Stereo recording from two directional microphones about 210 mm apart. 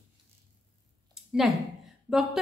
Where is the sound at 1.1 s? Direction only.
Centre (ahead or behind).